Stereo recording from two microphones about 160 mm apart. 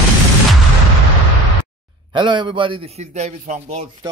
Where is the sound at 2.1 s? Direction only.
30° right (ahead or behind); by 3.9 s 45° right (ahead or behind).